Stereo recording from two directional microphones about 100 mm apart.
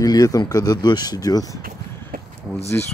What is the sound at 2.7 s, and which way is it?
Speech, 15° left (ahead or behind).